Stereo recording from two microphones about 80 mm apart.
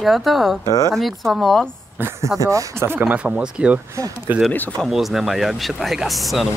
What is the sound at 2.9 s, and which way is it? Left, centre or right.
Speech, right.